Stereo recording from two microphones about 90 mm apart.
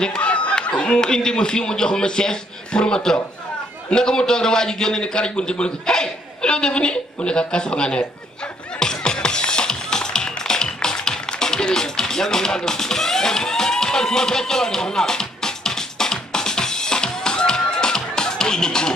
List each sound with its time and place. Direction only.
0.0 s a man's voice: 10° left (ahead or behind)
8.7 s music: 10° left (ahead or behind)